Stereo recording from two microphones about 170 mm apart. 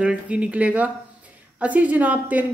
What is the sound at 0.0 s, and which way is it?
Speech, 5° right (ahead or behind).